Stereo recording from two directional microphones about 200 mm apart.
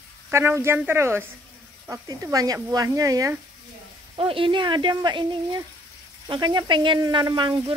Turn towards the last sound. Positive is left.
turn(degrees=-25)  # may be behind; listen again after turning